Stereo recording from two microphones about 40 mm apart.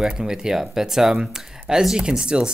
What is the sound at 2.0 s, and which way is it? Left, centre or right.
Speech, right.